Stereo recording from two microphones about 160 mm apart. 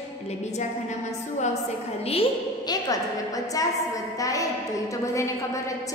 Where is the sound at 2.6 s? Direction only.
25° left (ahead or behind).